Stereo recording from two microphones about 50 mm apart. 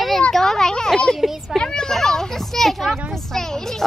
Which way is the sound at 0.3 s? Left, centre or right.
Centre.